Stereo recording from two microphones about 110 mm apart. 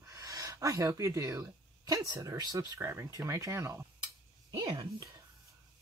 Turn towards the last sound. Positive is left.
turn(degrees=-40)  # may be behind; listen again after turning